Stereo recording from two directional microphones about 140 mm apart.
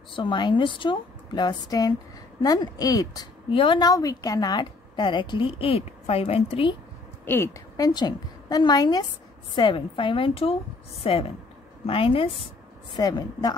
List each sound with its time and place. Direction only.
0.1 s a woman's voice: 35° left (ahead or behind)
3.4 s a woman's voice: 40° left (ahead or behind)
3.9 s a woman's voice: 25° left (ahead or behind); by 6.8 s 40° left (ahead or behind)
7.2 s a woman's voice: 15° left (ahead or behind)
7.7 s a woman's voice: 30° left (ahead or behind)
12.9 s a woman's voice: 30° left (ahead or behind)